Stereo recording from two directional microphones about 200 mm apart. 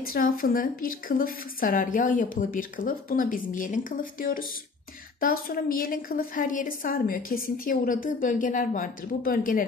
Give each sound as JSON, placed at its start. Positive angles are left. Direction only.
{"t": 0.0, "sound": "a woman's voice", "side_deg": 45}